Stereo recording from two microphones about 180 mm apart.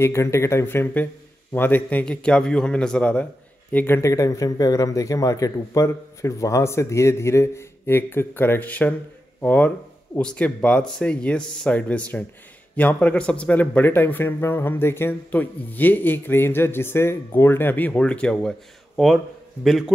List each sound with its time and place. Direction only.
0.0 s a man's voice: 15° left (ahead or behind); by 19.8 s centre (ahead or behind)